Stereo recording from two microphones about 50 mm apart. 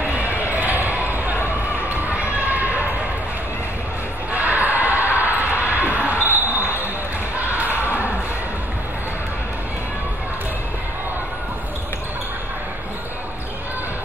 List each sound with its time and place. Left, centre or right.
0.0 s basketball bounce: right
1.9 s run: right
4.3 s a sound: right